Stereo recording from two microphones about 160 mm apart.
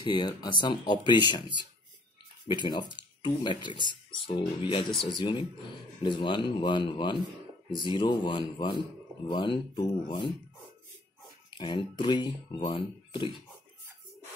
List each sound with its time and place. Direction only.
0.0 s speech: 30° left (ahead or behind)
2.4 s speech: 30° left (ahead or behind)
11.5 s speech: 30° left (ahead or behind)